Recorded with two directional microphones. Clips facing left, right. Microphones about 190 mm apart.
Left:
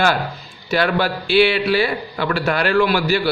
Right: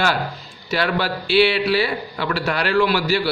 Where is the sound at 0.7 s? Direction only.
50° left (ahead or behind).